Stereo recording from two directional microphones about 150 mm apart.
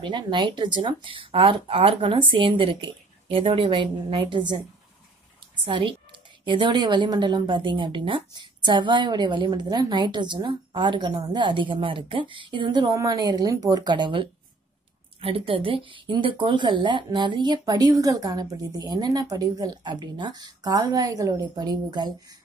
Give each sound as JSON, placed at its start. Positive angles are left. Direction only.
{"t": 0.0, "sound": "a woman's voice", "side_deg": -30}
{"t": 5.7, "sound": "a woman's voice", "side_deg": -35}